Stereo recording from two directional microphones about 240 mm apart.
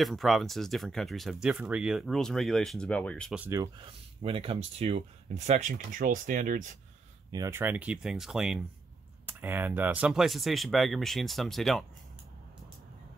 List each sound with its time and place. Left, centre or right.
0.0 s speech: centre
4.2 s speech: right
7.2 s speech: centre